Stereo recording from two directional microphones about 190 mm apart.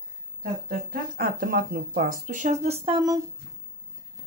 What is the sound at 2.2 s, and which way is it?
Speech, 40° right (ahead or behind).